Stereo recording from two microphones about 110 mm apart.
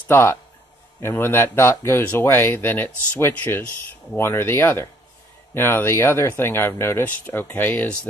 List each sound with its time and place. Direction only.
0.1 s speech: 25° left (ahead or behind)